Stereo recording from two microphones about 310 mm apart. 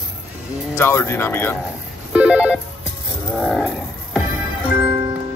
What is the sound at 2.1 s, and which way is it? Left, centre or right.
Telephone, centre.